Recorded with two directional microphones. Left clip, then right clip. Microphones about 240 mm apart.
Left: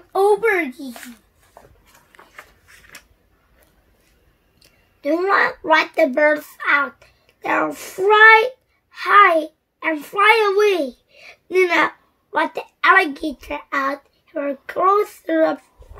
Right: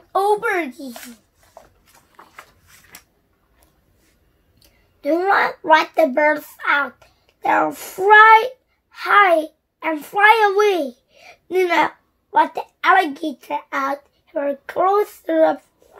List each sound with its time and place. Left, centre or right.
0.1 s a child's voice: centre
4.6 s a child's voice: centre